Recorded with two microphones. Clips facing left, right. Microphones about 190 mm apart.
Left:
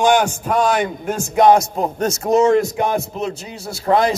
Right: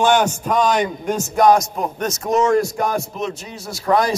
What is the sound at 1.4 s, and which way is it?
A man's voice, 30° left (ahead or behind).